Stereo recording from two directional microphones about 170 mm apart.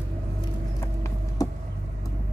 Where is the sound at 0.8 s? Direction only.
15° left (ahead or behind).